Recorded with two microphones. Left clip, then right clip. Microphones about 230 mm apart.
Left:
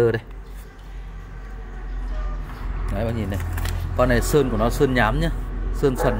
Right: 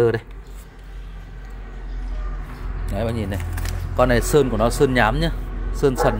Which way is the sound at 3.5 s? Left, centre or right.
Centre.